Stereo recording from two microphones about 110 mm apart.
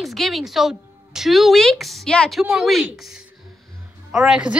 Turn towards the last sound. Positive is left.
turn(degrees=-5)  # may be behind; listen again after turning